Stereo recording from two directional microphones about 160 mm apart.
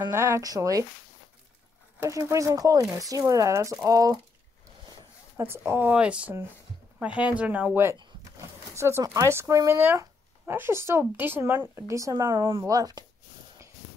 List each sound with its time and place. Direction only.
0.0 s speech: 20° right (ahead or behind)
2.0 s speech: 20° right (ahead or behind)
5.4 s speech: 15° right (ahead or behind)
13.8 s clip-clop: centre (ahead or behind)